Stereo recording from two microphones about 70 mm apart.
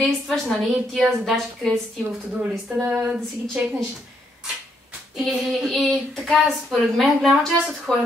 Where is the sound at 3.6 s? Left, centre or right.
Centre.